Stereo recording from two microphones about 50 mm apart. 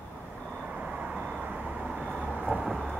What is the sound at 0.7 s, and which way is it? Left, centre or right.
Vehicle, centre.